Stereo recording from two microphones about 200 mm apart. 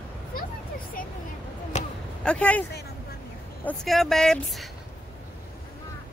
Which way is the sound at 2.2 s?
5° left (ahead or behind).